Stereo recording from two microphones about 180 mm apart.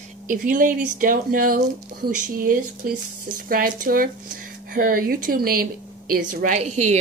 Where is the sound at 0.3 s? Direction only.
45° right (ahead or behind).